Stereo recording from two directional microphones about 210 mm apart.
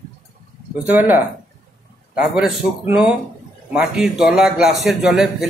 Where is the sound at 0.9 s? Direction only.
10° right (ahead or behind).